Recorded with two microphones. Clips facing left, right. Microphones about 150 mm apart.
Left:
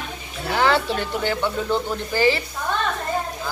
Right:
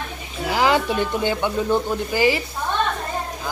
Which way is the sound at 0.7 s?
15° right (ahead or behind).